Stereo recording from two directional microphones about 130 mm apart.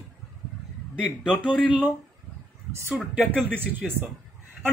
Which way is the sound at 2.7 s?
15° right (ahead or behind).